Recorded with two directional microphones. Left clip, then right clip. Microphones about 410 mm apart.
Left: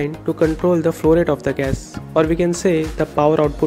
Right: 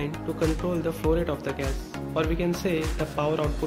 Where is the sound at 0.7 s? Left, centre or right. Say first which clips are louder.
Left 11 dB; centre.